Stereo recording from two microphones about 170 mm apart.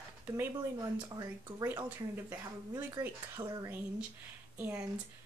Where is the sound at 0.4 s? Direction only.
15° right (ahead or behind).